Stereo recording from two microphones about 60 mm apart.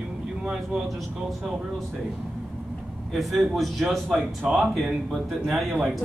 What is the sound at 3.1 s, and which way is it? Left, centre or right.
Speech, centre.